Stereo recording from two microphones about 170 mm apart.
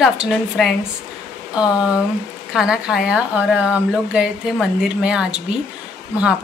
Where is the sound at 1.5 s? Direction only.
5° right (ahead or behind).